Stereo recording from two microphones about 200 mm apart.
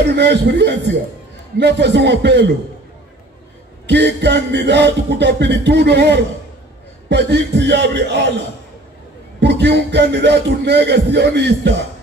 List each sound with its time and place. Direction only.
0.0 s music: 55° right (ahead or behind)
3.8 s music: 55° right (ahead or behind)
9.4 s music: 60° right (ahead or behind)